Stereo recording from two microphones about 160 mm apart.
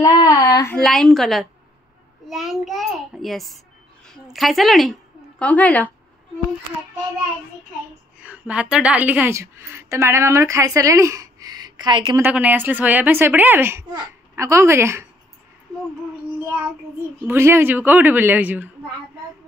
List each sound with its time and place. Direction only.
0.0 s speech: 25° left (ahead or behind)
0.8 s a woman's voice: centre (ahead or behind)
8.2 s a woman's voice: 10° right (ahead or behind); by 12.2 s 30° right (ahead or behind)
12.2 s a woman's voice: 10° right (ahead or behind)
17.3 s a woman's voice: 15° right (ahead or behind)